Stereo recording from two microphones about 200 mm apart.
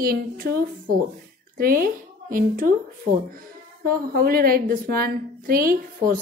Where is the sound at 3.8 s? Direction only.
50° right (ahead or behind).